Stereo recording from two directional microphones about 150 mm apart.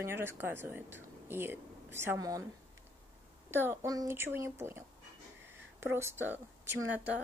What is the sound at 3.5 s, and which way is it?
A woman's voice, 15° right (ahead or behind).